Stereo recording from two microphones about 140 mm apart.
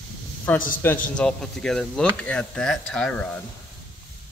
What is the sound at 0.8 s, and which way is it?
Speech, 10° left (ahead or behind).